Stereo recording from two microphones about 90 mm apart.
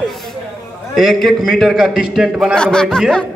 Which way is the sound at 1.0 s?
5° left (ahead or behind).